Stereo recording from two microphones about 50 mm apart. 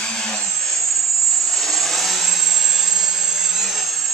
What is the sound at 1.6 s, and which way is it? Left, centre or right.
Vehicle, centre.